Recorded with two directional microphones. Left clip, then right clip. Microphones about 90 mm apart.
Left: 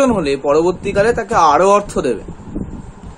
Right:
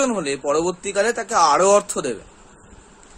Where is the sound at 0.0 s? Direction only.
30° right (ahead or behind).